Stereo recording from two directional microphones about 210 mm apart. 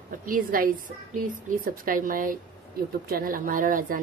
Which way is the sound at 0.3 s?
40° right (ahead or behind).